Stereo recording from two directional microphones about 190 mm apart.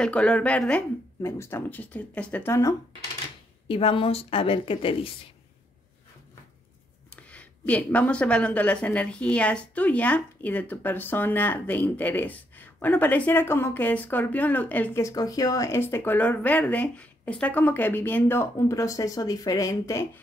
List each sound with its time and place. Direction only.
0.0 s a woman's voice: 5° left (ahead or behind)
3.6 s a woman's voice: 30° left (ahead or behind)
7.2 s a woman's voice: 5° left (ahead or behind)